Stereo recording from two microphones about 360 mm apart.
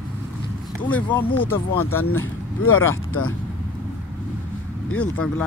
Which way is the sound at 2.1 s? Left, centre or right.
Left.